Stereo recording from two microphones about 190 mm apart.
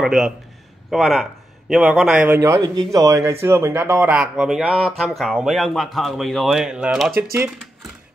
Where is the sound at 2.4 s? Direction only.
20° right (ahead or behind).